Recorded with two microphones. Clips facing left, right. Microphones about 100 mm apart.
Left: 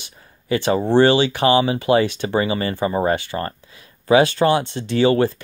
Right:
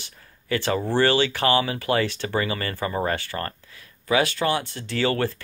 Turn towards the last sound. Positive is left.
turn(degrees=20)  # may be behind; listen again after turning